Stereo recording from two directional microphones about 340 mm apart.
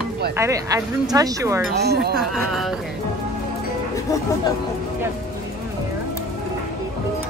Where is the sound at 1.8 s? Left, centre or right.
Right.